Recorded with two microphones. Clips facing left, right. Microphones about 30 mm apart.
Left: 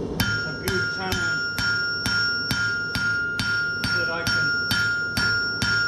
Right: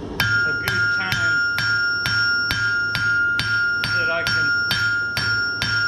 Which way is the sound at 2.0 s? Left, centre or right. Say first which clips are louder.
Right 4 dB; right.